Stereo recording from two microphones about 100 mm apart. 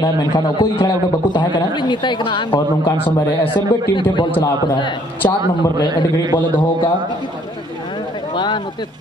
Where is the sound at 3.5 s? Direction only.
55° left (ahead or behind).